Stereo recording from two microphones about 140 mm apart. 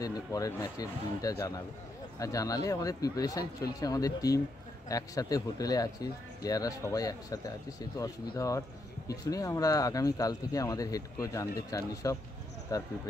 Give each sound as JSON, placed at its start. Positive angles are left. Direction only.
{"t": 0.0, "sound": "speech", "side_deg": 25}